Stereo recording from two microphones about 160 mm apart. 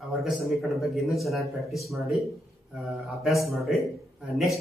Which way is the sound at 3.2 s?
Centre (ahead or behind).